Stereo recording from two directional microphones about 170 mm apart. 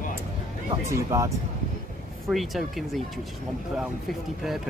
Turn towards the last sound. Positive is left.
turn(degrees=0)  # may be behind; listen again after turning